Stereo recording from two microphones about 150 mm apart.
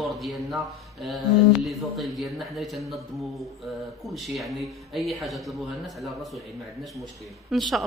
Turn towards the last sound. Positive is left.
turn(degrees=0)  # may be behind; listen again after turning